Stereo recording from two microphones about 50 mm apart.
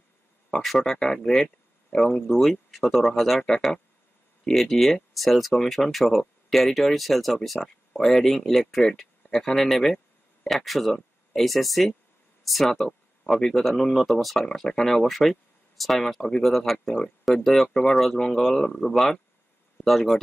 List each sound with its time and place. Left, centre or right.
0.5 s speech: centre
16.4 s speech: centre
16.8 s speech: centre
17.2 s speech: centre
18.6 s speech: centre